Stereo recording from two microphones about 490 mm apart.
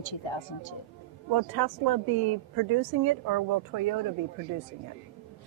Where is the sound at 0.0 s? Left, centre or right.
Left.